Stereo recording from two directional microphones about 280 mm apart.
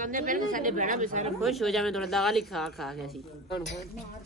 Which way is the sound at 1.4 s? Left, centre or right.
Centre.